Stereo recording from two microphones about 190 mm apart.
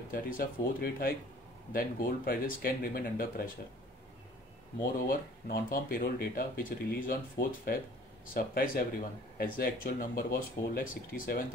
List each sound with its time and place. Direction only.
0.1 s speech: 50° left (ahead or behind)
5.0 s speech: 50° left (ahead or behind)